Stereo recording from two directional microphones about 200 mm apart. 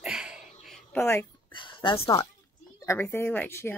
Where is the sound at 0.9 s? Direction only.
10° left (ahead or behind).